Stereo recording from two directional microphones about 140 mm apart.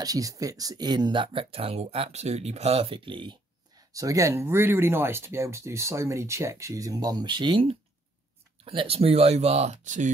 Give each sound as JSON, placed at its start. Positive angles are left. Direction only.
{"t": 0.0, "sound": "speech", "side_deg": -25}
{"t": 3.9, "sound": "speech", "side_deg": -25}